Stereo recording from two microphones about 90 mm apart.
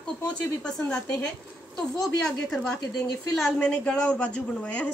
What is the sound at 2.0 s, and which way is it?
A woman's voice, 5° left (ahead or behind).